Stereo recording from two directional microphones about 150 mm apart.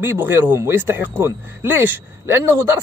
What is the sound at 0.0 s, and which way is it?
Speech, 15° right (ahead or behind).